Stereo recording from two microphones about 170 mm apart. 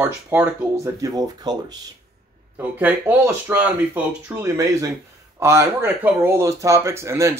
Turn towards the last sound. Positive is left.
turn(degrees=-15)  # may be behind; listen again after turning